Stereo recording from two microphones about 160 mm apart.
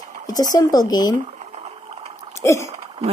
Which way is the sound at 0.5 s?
25° left (ahead or behind).